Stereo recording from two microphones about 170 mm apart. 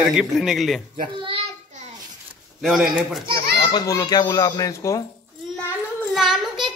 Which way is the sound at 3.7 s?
20° left (ahead or behind).